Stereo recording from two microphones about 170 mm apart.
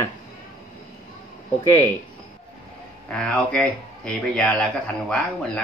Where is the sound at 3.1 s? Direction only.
5° left (ahead or behind).